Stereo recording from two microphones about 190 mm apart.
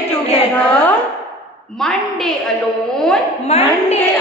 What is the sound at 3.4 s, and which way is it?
Speech, 35° left (ahead or behind).